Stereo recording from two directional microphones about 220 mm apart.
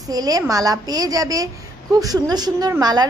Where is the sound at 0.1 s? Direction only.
15° right (ahead or behind).